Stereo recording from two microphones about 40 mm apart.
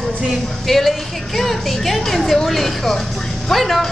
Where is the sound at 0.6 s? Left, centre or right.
Centre.